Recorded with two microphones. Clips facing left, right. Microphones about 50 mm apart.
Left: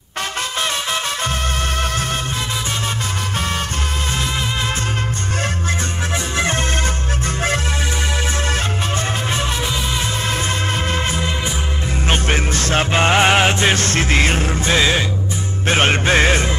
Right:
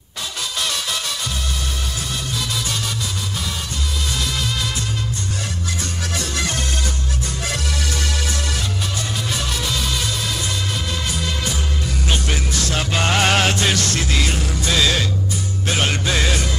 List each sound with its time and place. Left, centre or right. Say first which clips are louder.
6.3 s music: left 7 dB; left
10.9 s music: left 4 dB; left
15.6 s music: left 6 dB; left